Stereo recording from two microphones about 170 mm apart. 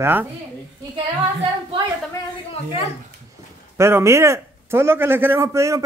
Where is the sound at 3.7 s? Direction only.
15° right (ahead or behind).